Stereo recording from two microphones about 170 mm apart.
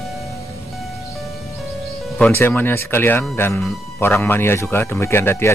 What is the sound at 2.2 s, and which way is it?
Speech, 10° left (ahead or behind).